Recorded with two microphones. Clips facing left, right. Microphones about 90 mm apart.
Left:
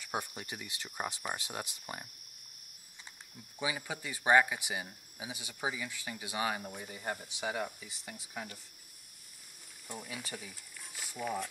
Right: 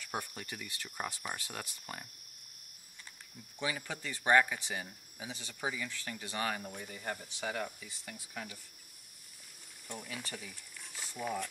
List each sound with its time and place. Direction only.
0.0 s speech: 15° left (ahead or behind)
3.5 s speech: 10° left (ahead or behind)
9.8 s speech: 10° left (ahead or behind)